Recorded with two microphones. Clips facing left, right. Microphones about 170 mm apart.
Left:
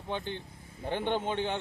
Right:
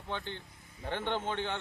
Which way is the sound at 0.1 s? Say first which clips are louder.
Left 4 dB; 15° left (ahead or behind).